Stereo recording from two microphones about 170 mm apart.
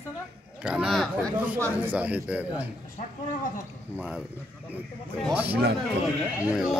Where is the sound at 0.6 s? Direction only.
5° right (ahead or behind).